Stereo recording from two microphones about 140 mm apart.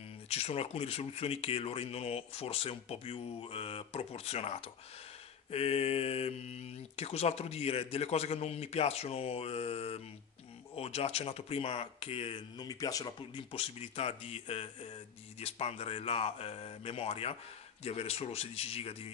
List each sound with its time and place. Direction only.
0.3 s speech: 45° left (ahead or behind)
12.5 s speech: 25° left (ahead or behind); by 19.0 s 45° left (ahead or behind)